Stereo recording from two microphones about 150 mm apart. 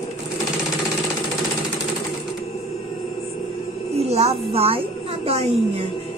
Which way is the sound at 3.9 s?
45° right (ahead or behind).